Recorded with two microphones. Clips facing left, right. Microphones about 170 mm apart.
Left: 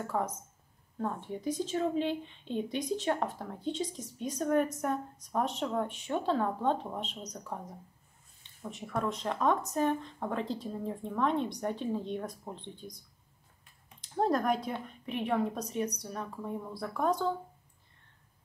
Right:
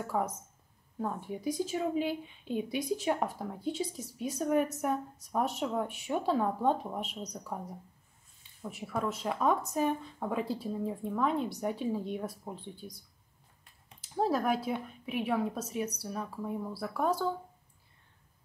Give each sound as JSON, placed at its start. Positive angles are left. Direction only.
{"t": 0.0, "sound": "speech", "side_deg": -10}
{"t": 14.0, "sound": "a woman's voice", "side_deg": -5}